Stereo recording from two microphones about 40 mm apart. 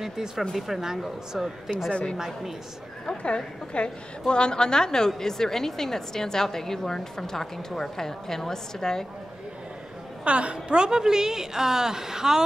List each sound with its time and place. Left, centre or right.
0.6 s a woman's voice: centre
1.9 s a woman's voice: left
2.1 s a woman's voice: centre
3.1 s a woman's voice: left
10.2 s a woman's voice: right; by 12.4 s centre